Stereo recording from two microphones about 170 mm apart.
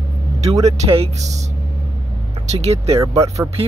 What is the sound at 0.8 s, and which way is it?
Speech, 40° right (ahead or behind).